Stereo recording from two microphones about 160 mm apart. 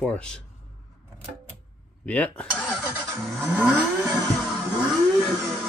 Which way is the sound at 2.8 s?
15° right (ahead or behind).